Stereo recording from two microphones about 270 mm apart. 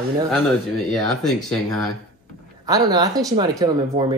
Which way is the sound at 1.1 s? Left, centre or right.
Centre.